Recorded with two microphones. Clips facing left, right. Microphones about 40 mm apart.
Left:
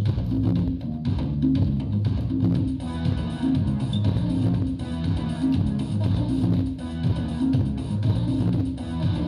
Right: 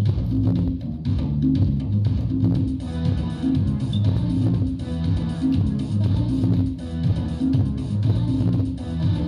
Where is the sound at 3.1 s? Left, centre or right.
Centre.